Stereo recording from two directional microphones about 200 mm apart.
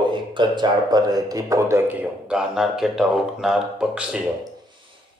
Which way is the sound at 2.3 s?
5° right (ahead or behind).